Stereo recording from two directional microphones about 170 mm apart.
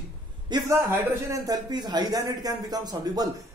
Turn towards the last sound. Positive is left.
turn(degrees=-25)  # may be behind; listen again after turning